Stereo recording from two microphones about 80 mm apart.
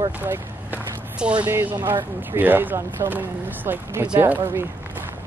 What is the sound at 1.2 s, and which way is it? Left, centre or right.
Speech, centre.